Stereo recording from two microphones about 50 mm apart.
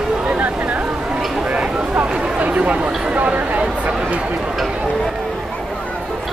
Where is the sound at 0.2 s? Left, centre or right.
Right.